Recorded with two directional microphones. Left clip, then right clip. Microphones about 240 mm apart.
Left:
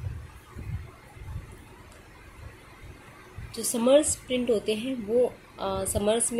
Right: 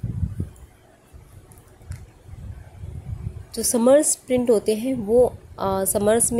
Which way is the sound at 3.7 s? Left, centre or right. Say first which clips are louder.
Right 5 dB; right.